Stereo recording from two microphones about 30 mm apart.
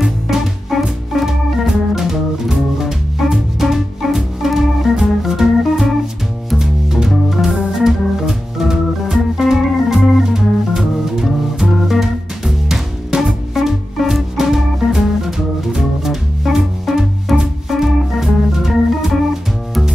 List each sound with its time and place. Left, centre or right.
0.0 s organ: centre
2.8 s music: centre
5.6 s organ: centre
6.6 s music: centre
7.1 s organ: centre
10.3 s music: centre